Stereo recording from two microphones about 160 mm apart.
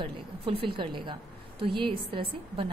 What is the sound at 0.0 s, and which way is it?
Speech, 35° right (ahead or behind).